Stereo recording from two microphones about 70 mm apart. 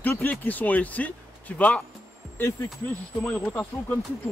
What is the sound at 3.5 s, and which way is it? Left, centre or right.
Speech, left.